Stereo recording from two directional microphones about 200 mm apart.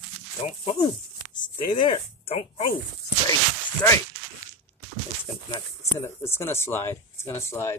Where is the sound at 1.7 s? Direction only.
25° left (ahead or behind).